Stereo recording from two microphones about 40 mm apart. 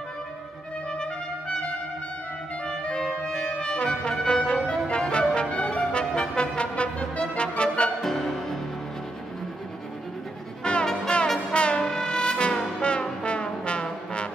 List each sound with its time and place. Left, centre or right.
1.5 s brass instrument: left
2.6 s clarinet: left
3.3 s brass instrument: left
4.1 s music: centre
8.0 s music: centre
10.6 s music: left
11.5 s brass instrument: left
11.8 s brass instrument: centre